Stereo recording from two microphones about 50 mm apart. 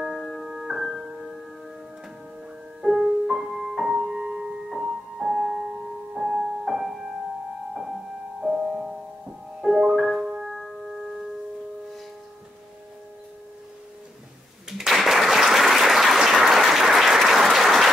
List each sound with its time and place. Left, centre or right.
0.5 s music: centre
2.8 s music: centre
8.4 s music: centre
14.7 s applause: centre